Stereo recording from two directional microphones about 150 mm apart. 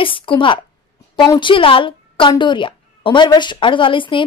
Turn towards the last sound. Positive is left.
turn(degrees=35)  # may be behind; listen again after turning